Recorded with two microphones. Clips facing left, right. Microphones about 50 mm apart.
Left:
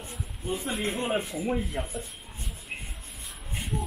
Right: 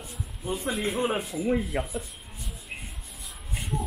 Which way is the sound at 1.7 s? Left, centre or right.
Right.